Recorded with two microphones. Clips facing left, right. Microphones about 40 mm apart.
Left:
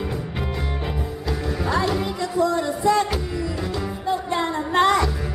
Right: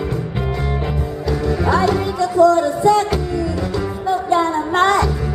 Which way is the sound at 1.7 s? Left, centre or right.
Centre.